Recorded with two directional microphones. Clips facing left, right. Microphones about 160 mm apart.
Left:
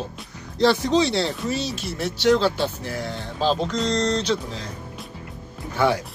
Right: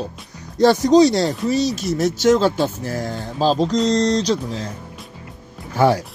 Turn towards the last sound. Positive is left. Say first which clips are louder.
# right 5 dB
turn(degrees=-40)  # may be behind; listen again after turning